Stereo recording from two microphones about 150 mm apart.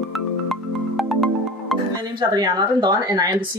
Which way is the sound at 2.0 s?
30° right (ahead or behind).